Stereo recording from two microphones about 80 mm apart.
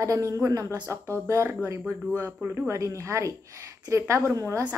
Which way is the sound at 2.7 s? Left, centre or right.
Right.